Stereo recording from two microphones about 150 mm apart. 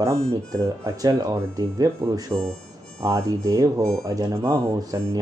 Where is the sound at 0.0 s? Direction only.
20° right (ahead or behind).